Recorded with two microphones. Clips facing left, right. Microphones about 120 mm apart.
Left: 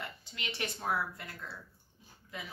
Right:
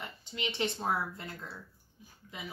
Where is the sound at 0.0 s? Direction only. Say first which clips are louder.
Right 4 dB; 20° right (ahead or behind).